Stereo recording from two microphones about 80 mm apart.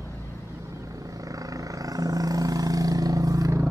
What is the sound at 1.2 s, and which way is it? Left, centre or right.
Vehicle, right.